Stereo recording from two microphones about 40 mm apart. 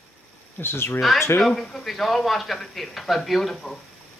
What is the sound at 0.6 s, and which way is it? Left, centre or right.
Speech, left.